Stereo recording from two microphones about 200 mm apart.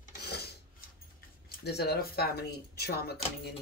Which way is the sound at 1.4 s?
55° left (ahead or behind).